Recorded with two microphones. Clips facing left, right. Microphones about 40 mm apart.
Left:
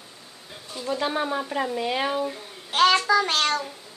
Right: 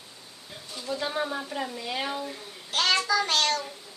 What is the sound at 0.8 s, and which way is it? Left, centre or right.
A child's voice, left.